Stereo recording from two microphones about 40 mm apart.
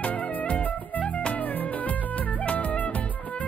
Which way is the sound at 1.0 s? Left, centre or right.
Left.